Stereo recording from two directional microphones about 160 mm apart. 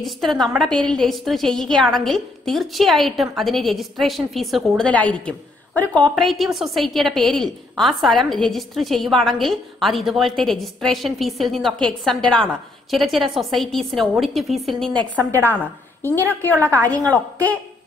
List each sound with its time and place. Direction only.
0.0 s a woman's voice: centre (ahead or behind)
16.5 s a woman's voice: 15° right (ahead or behind)